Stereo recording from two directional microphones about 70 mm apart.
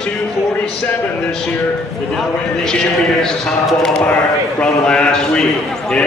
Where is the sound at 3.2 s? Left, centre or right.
Centre.